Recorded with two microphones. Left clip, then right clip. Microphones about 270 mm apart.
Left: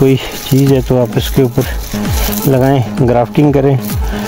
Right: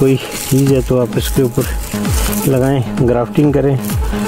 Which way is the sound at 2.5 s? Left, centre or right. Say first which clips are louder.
Left 4 dB; left.